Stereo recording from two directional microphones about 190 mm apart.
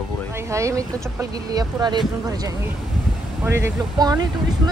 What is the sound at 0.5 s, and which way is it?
Speech, 15° right (ahead or behind).